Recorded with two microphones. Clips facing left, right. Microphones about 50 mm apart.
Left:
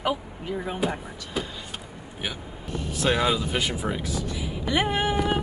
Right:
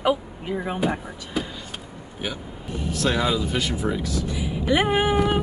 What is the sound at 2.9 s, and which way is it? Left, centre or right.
Speech, centre.